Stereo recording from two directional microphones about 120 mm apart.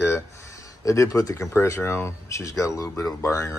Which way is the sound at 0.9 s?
25° left (ahead or behind).